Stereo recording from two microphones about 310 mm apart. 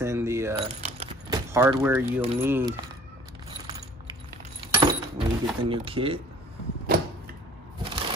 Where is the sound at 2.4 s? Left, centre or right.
Centre.